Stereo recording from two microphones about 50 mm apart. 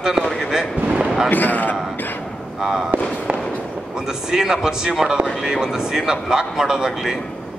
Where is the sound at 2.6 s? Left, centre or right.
Centre.